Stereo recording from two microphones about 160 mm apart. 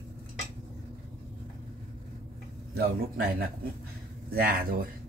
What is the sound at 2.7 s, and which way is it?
A man's voice, 75° right (ahead or behind).